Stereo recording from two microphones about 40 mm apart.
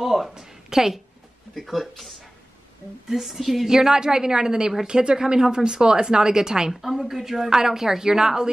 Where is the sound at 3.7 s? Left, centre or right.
Centre.